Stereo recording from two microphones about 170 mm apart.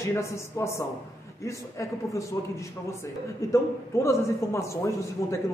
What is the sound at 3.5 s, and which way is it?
A man's voice, 15° left (ahead or behind).